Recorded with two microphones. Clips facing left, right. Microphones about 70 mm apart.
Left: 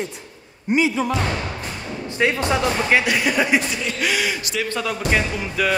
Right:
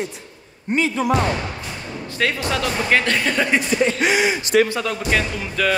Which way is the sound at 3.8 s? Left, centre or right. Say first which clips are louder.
Right 5 dB; right.